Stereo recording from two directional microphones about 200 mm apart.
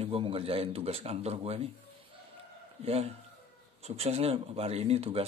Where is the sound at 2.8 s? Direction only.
30° right (ahead or behind).